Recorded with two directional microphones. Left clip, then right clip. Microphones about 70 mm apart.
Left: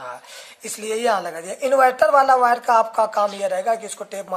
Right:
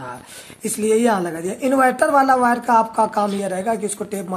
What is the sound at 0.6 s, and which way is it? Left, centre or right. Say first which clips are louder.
A woman's voice: right 5 dB; centre.